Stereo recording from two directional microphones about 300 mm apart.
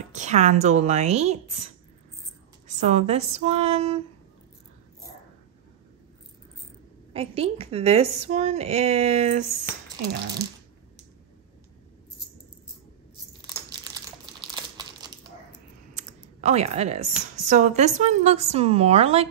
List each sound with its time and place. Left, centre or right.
0.1 s a woman's voice: right
2.8 s a woman's voice: right
7.2 s a woman's voice: centre
13.5 s crumpling: centre
15.9 s computer keyboard: right
17.5 s a woman's voice: right